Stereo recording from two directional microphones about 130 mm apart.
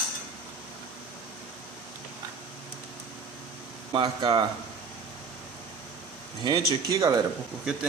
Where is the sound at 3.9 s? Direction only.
35° right (ahead or behind).